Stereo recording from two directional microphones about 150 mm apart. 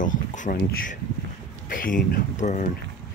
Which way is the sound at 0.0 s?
60° left (ahead or behind).